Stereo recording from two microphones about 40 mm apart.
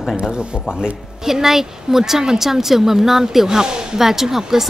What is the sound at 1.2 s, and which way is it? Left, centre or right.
A woman's voice, centre.